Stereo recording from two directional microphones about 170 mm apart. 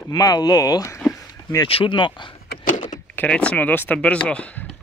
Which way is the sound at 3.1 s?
10° left (ahead or behind).